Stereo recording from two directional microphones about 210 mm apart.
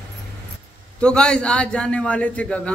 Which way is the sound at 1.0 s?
5° left (ahead or behind).